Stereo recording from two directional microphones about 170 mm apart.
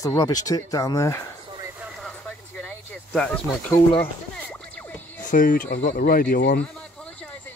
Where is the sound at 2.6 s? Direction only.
5° left (ahead or behind).